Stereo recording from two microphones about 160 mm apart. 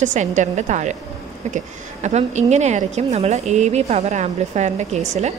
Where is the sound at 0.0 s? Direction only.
50° right (ahead or behind).